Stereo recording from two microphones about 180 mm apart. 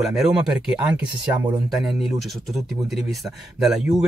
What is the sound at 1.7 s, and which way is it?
Speech, centre (ahead or behind).